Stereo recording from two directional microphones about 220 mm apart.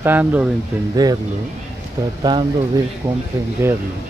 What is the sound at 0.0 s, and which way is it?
Speech, 10° right (ahead or behind).